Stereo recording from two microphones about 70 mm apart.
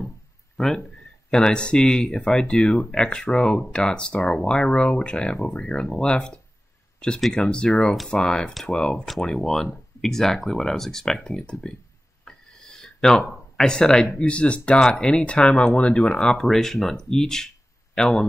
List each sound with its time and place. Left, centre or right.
0.6 s speech: centre
12.3 s a sound: centre
13.6 s speech: centre